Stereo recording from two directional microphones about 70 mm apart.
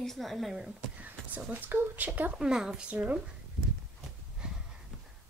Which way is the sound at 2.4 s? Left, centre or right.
Centre.